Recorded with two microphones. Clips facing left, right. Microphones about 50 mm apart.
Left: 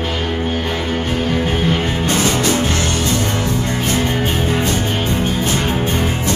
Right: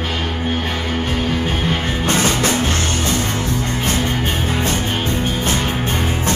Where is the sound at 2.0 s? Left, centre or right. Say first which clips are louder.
Right 2 dB; right.